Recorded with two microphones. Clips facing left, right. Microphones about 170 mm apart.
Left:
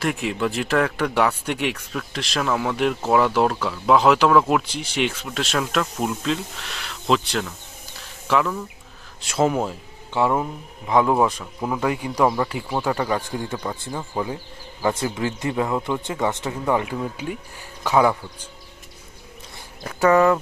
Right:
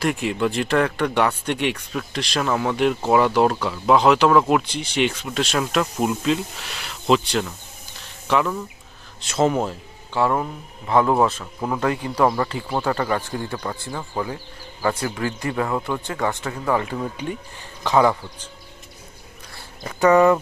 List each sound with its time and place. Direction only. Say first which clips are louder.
0.0 s speech: right 2 dB; centre (ahead or behind); by 16.9 s 15° left (ahead or behind)
16.9 s speech: even; 5° left (ahead or behind)
19.8 s speech: right 1 dB; centre (ahead or behind)